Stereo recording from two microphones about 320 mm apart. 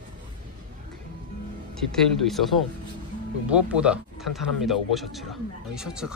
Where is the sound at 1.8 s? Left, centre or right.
Centre.